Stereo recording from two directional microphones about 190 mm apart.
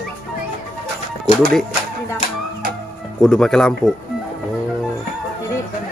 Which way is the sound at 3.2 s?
5° left (ahead or behind).